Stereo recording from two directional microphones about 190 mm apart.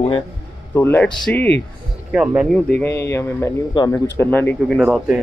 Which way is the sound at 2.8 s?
15° left (ahead or behind).